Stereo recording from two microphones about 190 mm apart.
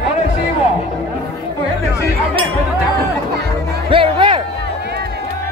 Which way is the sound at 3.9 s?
25° right (ahead or behind).